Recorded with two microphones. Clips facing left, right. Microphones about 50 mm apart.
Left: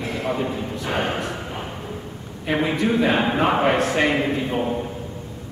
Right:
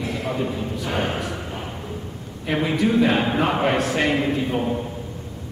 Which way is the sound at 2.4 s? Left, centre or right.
Centre.